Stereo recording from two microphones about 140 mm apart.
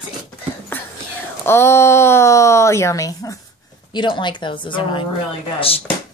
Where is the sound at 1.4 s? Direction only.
20° left (ahead or behind); by 5.0 s 35° left (ahead or behind).